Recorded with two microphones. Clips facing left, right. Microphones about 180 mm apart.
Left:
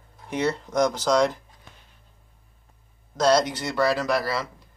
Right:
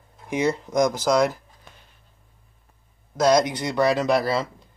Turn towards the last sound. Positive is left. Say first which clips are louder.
# right 4 dB
turn(degrees=-25)  # may be behind; listen again after turning